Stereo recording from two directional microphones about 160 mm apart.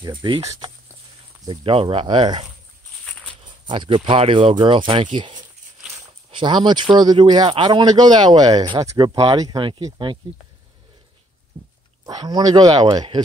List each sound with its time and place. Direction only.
0.0 s speech: 30° right (ahead or behind)
0.4 s speech: 20° right (ahead or behind)
1.4 s speech: 30° right (ahead or behind)
3.6 s speech: 30° right (ahead or behind)
11.6 s dog: 30° right (ahead or behind)
12.1 s speech: 25° right (ahead or behind)